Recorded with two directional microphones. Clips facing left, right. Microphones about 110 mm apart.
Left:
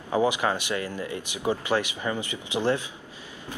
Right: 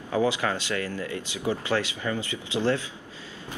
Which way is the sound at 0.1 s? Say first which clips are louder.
Left 1 dB; 20° left (ahead or behind).